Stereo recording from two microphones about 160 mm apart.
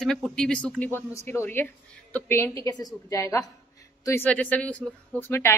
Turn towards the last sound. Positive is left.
turn(degrees=10)  # may be behind; listen again after turning